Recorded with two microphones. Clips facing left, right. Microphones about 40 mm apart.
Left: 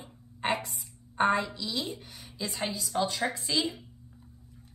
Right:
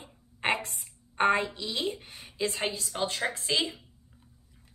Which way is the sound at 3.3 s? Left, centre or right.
Right.